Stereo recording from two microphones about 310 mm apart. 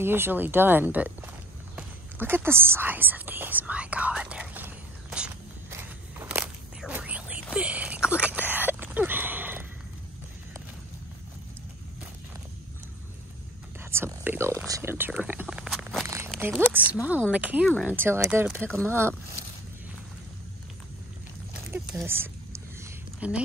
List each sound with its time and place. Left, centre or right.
0.0 s speech: centre
1.8 s whispering: centre
7.5 s a sound: centre
13.7 s whispering: centre
16.3 s speech: centre
18.6 s speech: centre
18.9 s speech: centre
21.6 s a sound: centre